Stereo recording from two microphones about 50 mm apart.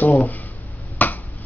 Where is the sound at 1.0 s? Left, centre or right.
Left.